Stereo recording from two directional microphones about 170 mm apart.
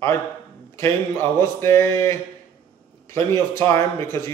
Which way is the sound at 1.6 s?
15° left (ahead or behind).